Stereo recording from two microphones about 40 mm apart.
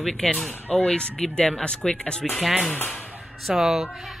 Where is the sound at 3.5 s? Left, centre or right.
Centre.